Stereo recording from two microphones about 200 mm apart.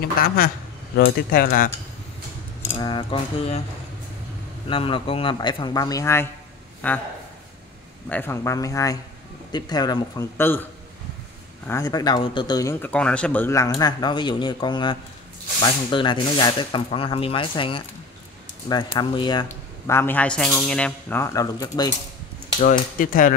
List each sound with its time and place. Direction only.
0.0 s speech: 45° left (ahead or behind)
2.7 s speech: 25° left (ahead or behind)
4.6 s speech: 25° left (ahead or behind); by 7.0 s 10° left (ahead or behind)
8.1 s speech: 10° left (ahead or behind)
11.6 s speech: 15° left (ahead or behind)
19.9 s speech: 10° left (ahead or behind)
22.6 s speech: 40° left (ahead or behind)